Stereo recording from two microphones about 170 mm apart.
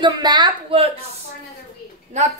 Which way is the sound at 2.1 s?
45° right (ahead or behind).